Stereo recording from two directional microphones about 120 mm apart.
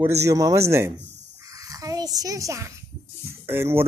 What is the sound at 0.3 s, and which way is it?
A child's voice, 30° right (ahead or behind).